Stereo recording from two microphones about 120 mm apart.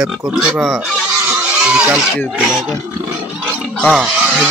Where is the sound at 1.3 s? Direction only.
10° right (ahead or behind).